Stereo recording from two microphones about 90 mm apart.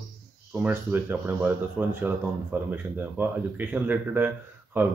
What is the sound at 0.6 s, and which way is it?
Speech, 20° right (ahead or behind).